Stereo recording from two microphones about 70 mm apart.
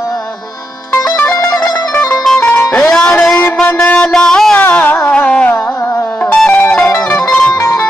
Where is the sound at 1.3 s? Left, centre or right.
Left.